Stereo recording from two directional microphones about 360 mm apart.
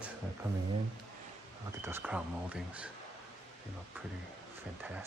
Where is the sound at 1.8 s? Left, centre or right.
Centre.